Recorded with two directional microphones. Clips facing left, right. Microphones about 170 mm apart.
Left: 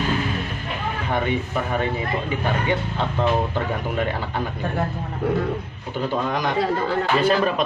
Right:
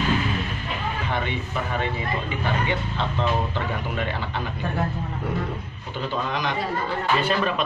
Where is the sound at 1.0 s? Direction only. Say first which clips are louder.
Left 8 dB; 45° left (ahead or behind).